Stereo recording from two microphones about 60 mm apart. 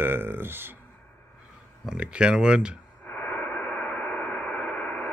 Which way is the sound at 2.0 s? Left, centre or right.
Centre.